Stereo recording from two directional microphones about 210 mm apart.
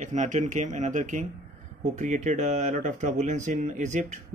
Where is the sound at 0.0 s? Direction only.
35° right (ahead or behind).